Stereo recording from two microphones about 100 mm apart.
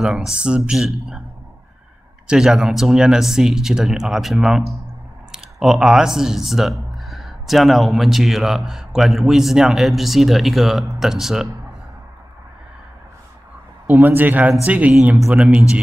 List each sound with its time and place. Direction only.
0.3 s speech: 10° right (ahead or behind)
2.2 s speech: 5° right (ahead or behind)
13.8 s speech: 20° right (ahead or behind)